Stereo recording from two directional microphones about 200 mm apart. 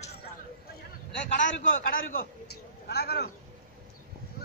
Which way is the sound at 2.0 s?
45° left (ahead or behind).